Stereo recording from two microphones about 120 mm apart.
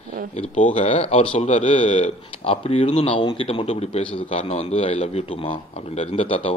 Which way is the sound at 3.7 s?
60° left (ahead or behind).